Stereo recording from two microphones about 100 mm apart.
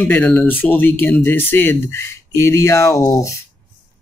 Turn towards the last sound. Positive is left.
turn(degrees=30)  # may be behind; listen again after turning